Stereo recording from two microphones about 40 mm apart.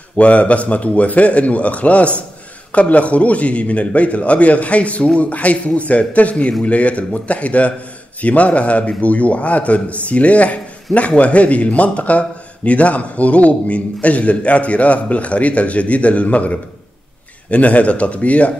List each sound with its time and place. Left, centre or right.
0.2 s a man's voice: left